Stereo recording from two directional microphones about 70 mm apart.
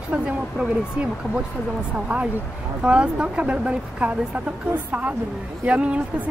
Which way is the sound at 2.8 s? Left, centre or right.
Centre.